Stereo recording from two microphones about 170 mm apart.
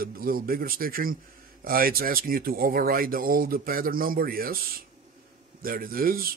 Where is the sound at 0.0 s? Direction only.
60° right (ahead or behind).